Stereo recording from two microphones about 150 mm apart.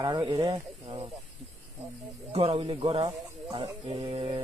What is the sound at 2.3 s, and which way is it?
Speech, 40° right (ahead or behind).